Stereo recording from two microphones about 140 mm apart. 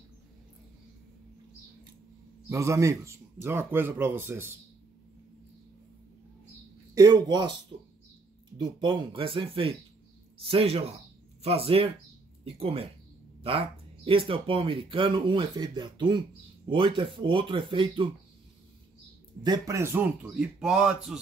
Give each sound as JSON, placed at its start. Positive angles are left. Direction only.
{"t": 2.5, "sound": "speech", "side_deg": -20}
{"t": 7.0, "sound": "speech", "side_deg": -25}
{"t": 8.5, "sound": "speech", "side_deg": -35}
{"t": 19.4, "sound": "speech", "side_deg": -25}